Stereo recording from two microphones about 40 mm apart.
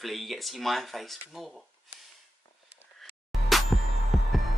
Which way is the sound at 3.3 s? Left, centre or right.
Centre.